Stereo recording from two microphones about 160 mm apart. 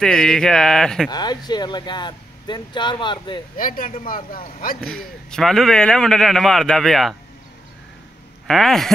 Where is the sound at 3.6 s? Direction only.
60° left (ahead or behind).